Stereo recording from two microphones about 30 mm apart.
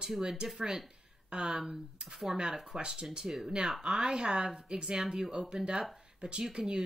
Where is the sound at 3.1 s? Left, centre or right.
Centre.